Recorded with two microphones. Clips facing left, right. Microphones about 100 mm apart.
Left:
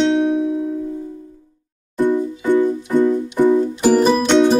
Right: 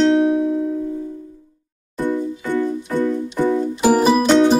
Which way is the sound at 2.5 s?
15° left (ahead or behind).